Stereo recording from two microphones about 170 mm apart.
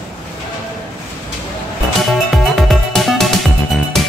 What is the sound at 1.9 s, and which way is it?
Music, centre (ahead or behind).